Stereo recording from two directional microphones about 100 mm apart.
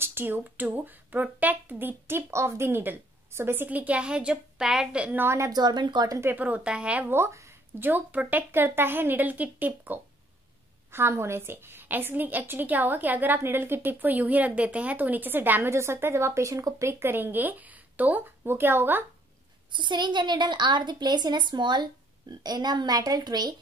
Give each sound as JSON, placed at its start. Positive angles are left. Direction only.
{"t": 0.0, "sound": "a woman's voice", "side_deg": -20}
{"t": 5.2, "sound": "a woman's voice", "side_deg": -25}
{"t": 5.5, "sound": "a woman's voice", "side_deg": -45}
{"t": 6.2, "sound": "a woman's voice", "side_deg": -15}
{"t": 19.7, "sound": "a woman's voice", "side_deg": -50}